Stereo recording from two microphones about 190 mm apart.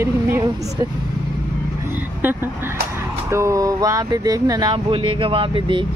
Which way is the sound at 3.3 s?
15° right (ahead or behind).